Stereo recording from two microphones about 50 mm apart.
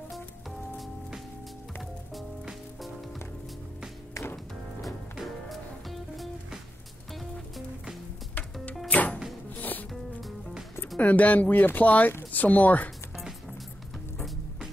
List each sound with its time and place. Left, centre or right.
4.1 s music: left
5.2 s music: centre
8.8 s music: left
11.0 s speech: left